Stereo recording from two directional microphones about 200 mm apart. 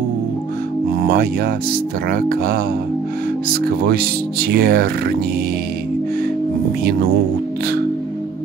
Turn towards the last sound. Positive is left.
turn(degrees=-50)  # may be behind; listen again after turning